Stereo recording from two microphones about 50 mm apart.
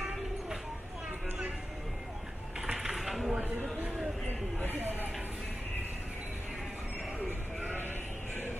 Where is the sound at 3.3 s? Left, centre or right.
Right.